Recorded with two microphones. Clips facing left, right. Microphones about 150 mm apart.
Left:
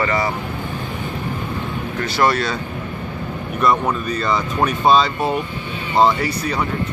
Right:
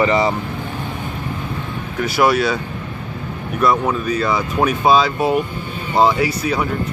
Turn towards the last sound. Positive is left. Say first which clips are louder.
# right 3 dB
turn(degrees=-5)  # may be behind; listen again after turning